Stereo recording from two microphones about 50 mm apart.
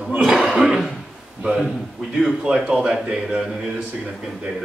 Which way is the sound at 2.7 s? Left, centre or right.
Right.